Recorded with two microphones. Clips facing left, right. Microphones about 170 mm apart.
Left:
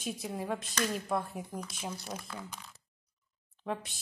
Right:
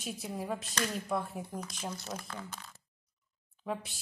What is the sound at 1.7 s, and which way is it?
Speech, 10° left (ahead or behind).